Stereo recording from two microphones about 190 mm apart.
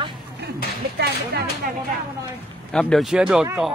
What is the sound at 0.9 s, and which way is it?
Speech, 55° right (ahead or behind).